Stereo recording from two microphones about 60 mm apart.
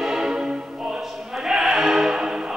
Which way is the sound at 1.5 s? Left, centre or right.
Centre.